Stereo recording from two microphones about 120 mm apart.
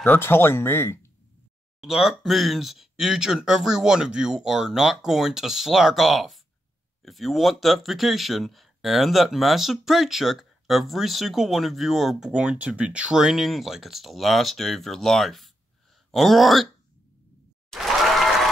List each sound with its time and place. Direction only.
0.0 s speech: 20° left (ahead or behind)
1.8 s speech: centre (ahead or behind)
17.6 s applause: centre (ahead or behind)